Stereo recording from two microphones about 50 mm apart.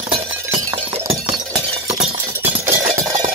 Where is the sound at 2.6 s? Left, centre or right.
Right.